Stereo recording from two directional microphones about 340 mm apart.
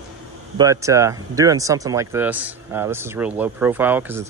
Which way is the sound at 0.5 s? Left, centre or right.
Centre.